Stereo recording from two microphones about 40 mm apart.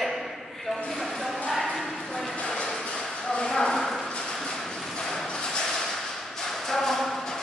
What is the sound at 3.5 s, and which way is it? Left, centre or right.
Clip-clop, centre.